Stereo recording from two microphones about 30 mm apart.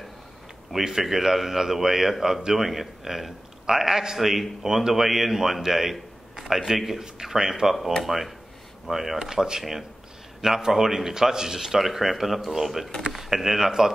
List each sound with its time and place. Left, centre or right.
0.7 s a man's voice: centre
4.2 s a man's voice: centre
8.0 s a man's voice: centre